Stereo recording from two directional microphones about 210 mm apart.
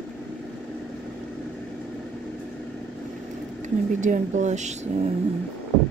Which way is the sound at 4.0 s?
35° right (ahead or behind).